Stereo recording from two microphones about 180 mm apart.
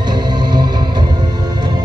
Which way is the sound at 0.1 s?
25° right (ahead or behind).